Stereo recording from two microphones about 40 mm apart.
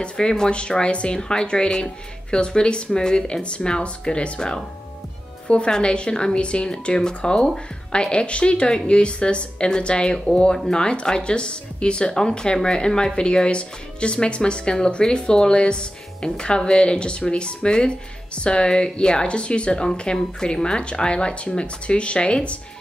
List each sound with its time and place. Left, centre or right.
0.0 s speech: centre
5.5 s speech: left
7.9 s speech: left